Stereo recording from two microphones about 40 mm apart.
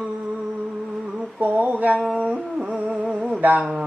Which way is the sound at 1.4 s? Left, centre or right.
Right.